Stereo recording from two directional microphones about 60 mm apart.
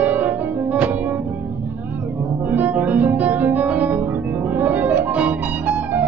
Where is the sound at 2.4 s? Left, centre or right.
Right.